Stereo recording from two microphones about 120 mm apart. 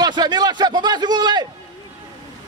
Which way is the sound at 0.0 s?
35° right (ahead or behind).